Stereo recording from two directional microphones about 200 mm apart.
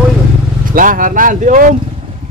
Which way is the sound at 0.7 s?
45° right (ahead or behind).